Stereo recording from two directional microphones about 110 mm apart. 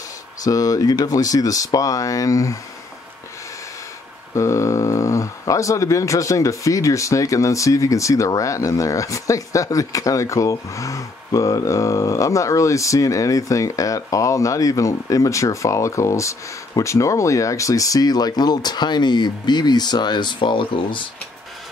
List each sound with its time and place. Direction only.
0.4 s speech: 35° left (ahead or behind)
4.4 s speech: 25° left (ahead or behind); by 21.1 s 50° left (ahead or behind)